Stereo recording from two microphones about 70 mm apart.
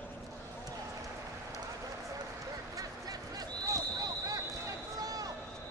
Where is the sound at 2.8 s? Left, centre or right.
Right.